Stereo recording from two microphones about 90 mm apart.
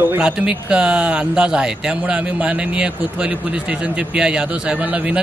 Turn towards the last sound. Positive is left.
turn(degrees=-15)  # may be behind; listen again after turning